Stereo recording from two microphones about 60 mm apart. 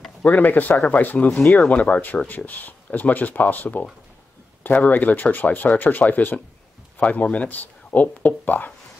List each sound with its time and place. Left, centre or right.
0.2 s speech: left